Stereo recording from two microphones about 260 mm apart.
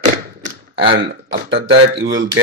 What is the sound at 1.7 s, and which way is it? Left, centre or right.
Speech, right.